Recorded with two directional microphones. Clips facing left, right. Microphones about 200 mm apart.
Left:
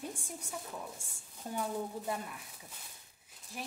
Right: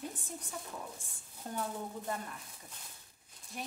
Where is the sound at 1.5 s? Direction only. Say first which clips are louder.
Left 1 dB; 10° left (ahead or behind).